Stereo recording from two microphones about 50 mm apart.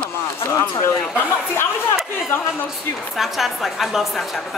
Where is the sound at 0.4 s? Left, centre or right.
Left.